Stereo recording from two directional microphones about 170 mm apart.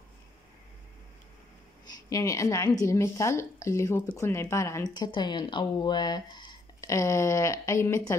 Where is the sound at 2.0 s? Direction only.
20° left (ahead or behind).